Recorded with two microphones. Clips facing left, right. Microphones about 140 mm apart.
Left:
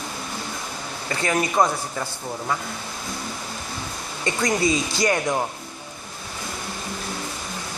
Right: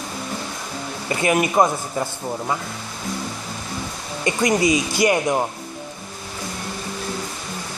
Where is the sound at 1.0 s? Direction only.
20° right (ahead or behind).